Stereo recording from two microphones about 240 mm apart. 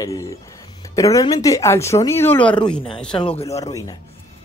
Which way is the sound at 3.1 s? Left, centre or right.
Left.